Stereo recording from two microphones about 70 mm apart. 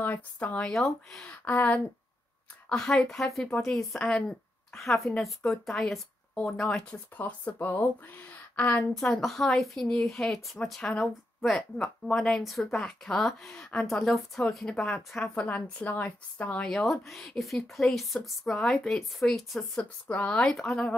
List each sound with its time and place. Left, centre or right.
0.0 s a woman's voice: left
0.7 s speech: centre
1.2 s a woman's voice: left
2.7 s a woman's voice: centre
7.2 s a woman's voice: left
9.2 s speech: centre
14.7 s speech: centre
15.3 s a woman's voice: left
16.6 s speech: centre
19.8 s speech: centre
20.4 s speech: centre